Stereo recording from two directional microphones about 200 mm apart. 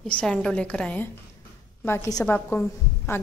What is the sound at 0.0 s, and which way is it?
A woman's voice, 5° left (ahead or behind).